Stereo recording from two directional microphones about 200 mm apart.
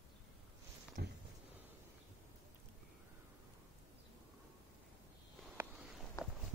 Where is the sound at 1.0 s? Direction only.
50° right (ahead or behind).